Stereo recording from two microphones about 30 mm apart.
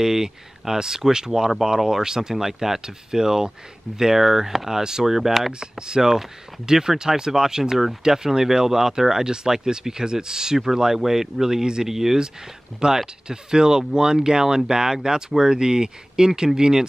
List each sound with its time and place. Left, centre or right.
0.0 s speech: centre
5.5 s speech: right
7.7 s speech: centre
8.0 s speech: centre
9.1 s speech: right
11.6 s speech: right
11.9 s speech: centre
12.8 s speech: right